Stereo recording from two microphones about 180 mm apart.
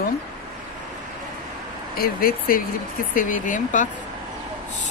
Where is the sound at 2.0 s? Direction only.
55° left (ahead or behind).